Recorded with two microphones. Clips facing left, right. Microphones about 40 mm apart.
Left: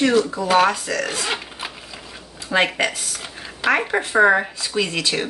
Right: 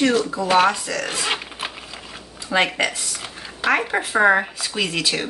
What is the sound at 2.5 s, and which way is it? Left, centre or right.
Speech, centre.